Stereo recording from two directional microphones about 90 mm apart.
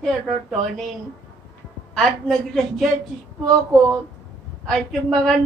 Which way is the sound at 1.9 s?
5° left (ahead or behind).